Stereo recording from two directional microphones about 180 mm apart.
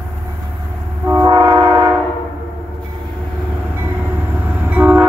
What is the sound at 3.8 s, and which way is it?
Train, 10° right (ahead or behind).